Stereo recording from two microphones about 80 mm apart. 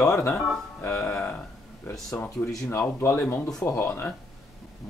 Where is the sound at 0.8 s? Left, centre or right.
Left.